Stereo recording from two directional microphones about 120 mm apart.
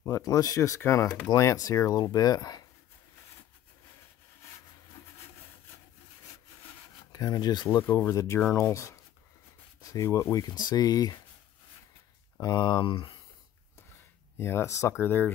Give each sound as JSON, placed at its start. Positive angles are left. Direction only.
{"t": 0.0, "sound": "speech", "side_deg": 25}
{"t": 1.3, "sound": "speech", "side_deg": 30}
{"t": 7.1, "sound": "speech", "side_deg": 30}
{"t": 12.4, "sound": "speech", "side_deg": 35}
{"t": 14.4, "sound": "speech", "side_deg": 20}